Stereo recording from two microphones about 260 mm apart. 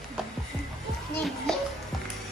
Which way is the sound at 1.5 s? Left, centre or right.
Centre.